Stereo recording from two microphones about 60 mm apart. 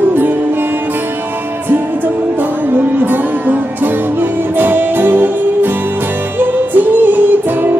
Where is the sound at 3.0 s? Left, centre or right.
Right.